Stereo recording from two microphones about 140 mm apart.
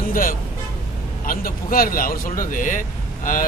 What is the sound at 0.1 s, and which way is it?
A man's voice, 80° left.